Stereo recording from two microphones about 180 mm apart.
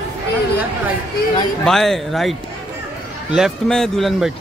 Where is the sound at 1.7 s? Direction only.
Centre (ahead or behind).